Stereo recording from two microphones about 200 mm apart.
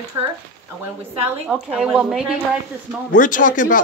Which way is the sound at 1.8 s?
5° right (ahead or behind).